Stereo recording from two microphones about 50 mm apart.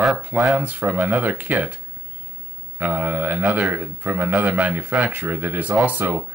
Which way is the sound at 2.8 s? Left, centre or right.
Right.